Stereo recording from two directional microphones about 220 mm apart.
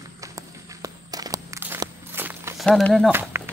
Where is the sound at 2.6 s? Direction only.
Centre (ahead or behind).